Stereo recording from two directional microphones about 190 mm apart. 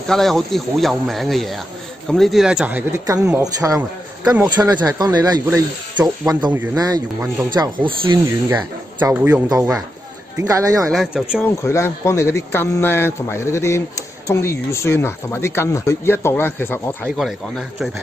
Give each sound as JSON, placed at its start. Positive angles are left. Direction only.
{"t": 0.1, "sound": "speech", "side_deg": 0}
{"t": 8.5, "sound": "speech", "side_deg": -15}
{"t": 10.9, "sound": "speech", "side_deg": 0}
{"t": 11.6, "sound": "speech", "side_deg": 15}